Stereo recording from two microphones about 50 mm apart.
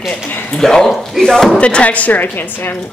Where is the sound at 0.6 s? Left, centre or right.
Centre.